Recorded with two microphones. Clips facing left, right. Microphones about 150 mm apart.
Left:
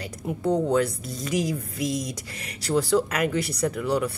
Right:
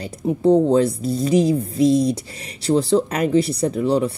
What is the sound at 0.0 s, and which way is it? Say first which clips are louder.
Speech: right 9 dB; 30° right (ahead or behind).